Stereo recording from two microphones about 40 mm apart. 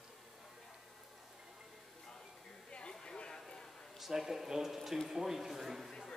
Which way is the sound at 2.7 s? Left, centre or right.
Left.